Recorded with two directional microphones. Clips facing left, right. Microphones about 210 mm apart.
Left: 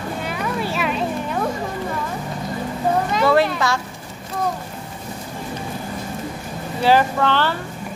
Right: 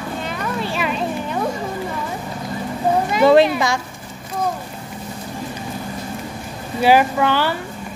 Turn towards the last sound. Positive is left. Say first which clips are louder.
# right 1 dB
turn(degrees=-10)  # may be behind; listen again after turning